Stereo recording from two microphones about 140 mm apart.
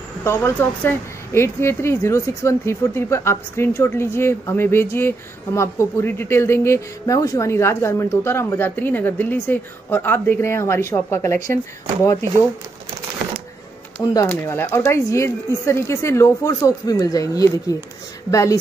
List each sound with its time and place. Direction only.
0.2 s speech: 15° left (ahead or behind)
14.0 s speech: 25° left (ahead or behind)
14.3 s speech: 15° left (ahead or behind)